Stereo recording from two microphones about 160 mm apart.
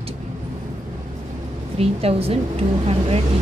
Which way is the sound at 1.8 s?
40° right (ahead or behind).